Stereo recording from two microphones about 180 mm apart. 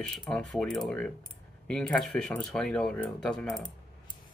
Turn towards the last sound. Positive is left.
turn(degrees=0)  # may be behind; listen again after turning